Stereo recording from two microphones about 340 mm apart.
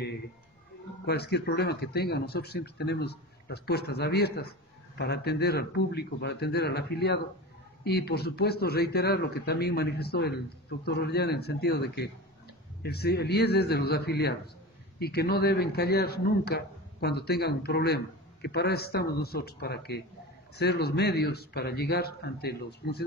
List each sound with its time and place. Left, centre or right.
1.0 s a man's voice: left